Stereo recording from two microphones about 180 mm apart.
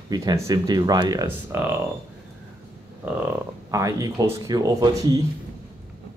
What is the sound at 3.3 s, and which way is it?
Speech, 20° right (ahead or behind).